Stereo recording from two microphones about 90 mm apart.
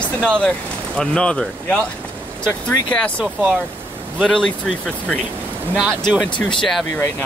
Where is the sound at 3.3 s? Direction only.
20° right (ahead or behind).